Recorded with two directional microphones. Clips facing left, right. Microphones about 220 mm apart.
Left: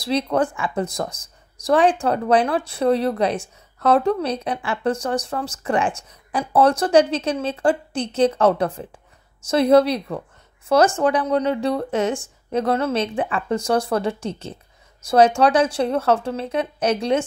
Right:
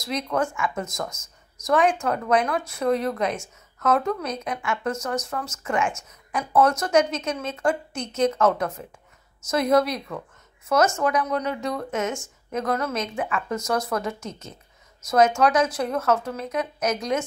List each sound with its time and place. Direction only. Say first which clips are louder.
0.0 s speech: left 5 dB; 30° left (ahead or behind)